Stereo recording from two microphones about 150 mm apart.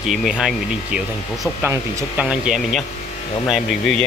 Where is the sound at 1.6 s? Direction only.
20° right (ahead or behind).